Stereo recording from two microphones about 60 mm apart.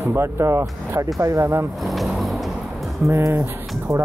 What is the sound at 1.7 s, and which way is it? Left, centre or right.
Vehicle, centre.